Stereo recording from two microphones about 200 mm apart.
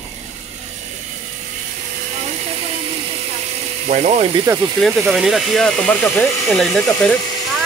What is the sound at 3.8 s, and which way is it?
Speech, 35° right (ahead or behind).